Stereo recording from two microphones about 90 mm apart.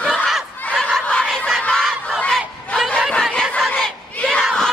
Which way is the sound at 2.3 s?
Centre (ahead or behind).